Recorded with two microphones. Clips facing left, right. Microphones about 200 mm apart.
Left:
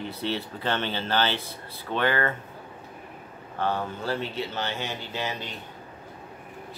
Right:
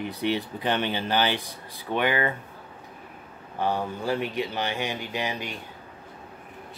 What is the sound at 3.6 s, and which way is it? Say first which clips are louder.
Speech: right 1 dB; 15° right (ahead or behind).